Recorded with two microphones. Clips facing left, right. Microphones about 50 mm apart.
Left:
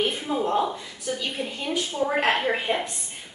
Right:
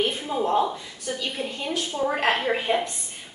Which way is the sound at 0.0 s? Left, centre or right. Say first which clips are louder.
Even; centre.